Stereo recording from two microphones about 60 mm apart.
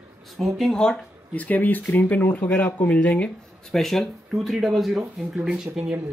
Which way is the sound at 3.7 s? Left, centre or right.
Centre.